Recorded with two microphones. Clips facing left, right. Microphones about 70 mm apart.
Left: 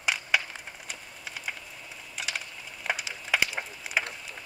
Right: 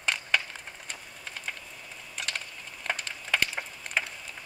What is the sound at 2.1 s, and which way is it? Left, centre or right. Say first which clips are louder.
Wood: left 1 dB; centre.